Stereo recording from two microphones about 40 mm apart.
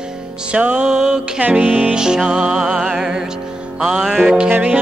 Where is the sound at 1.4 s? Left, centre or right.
Right.